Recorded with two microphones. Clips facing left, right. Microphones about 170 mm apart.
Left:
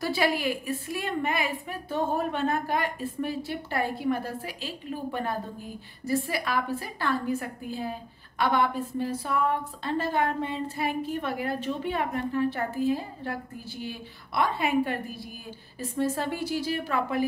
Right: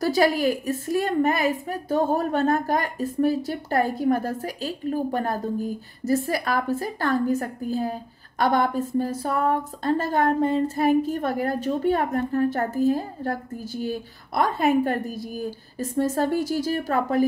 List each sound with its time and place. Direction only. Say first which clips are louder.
0.0 s a woman's voice: right 6 dB; 40° right (ahead or behind)